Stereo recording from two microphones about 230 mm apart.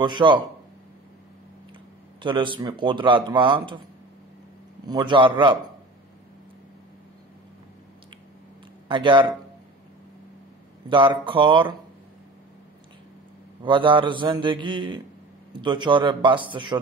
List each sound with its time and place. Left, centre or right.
0.0 s speech: centre
2.2 s speech: right
4.8 s speech: centre
8.8 s speech: right
10.9 s speech: right
13.7 s speech: right